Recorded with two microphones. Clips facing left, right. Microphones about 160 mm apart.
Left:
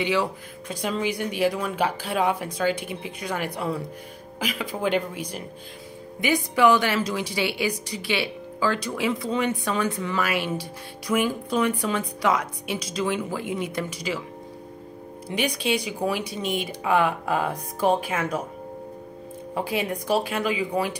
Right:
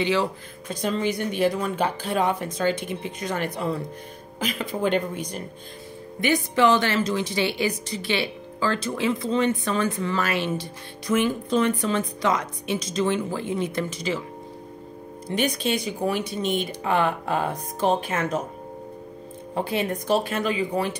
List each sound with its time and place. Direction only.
0.0 s a woman's voice: 10° left (ahead or behind)
15.3 s a woman's voice: 10° left (ahead or behind)
19.6 s a woman's voice: 10° left (ahead or behind)